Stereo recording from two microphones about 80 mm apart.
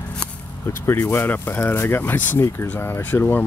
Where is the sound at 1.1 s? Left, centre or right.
Left.